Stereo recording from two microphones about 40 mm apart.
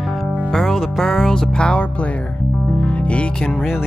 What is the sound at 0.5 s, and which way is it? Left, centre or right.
Music, centre.